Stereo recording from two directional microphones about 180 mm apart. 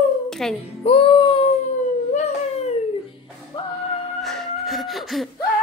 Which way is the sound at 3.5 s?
25° left (ahead or behind).